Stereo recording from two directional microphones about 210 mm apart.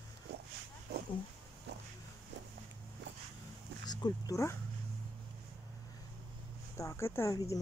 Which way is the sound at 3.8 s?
20° left (ahead or behind).